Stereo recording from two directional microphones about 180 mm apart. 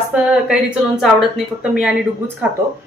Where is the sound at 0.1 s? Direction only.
5° right (ahead or behind).